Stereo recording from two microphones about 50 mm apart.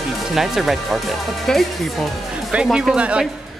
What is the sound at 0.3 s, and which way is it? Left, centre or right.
Speech, centre.